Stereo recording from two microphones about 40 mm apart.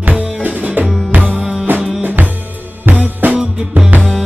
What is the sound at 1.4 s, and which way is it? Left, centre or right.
Music, centre.